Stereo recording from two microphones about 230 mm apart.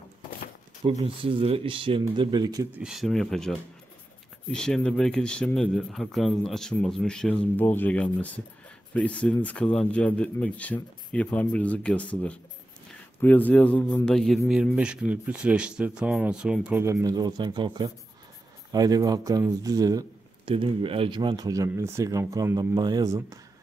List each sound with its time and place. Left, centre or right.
0.8 s speech: right
2.8 s a man's voice: centre